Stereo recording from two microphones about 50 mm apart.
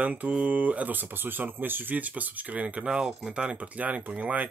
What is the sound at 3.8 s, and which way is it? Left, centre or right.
Speech, right.